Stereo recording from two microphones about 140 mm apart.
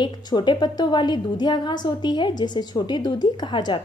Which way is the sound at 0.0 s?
30° left (ahead or behind).